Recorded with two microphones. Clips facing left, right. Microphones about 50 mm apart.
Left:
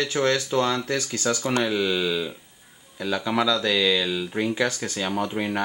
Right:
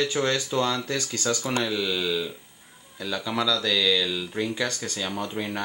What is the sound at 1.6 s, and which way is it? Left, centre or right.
Speech, centre.